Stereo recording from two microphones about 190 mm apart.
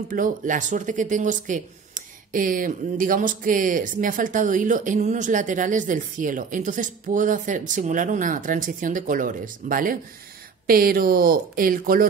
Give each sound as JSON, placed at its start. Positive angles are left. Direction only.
{"t": 0.1, "sound": "speech", "side_deg": -45}